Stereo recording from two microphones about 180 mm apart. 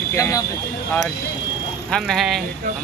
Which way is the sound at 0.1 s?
20° left (ahead or behind).